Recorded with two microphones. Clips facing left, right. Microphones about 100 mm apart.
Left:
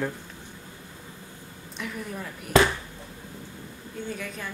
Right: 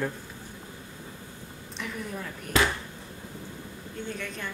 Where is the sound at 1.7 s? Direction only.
Centre (ahead or behind).